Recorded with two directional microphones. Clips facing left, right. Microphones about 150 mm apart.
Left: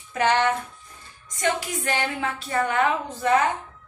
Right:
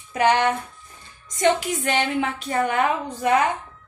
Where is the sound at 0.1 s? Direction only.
15° right (ahead or behind).